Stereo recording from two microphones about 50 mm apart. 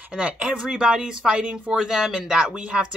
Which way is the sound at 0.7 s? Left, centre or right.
Centre.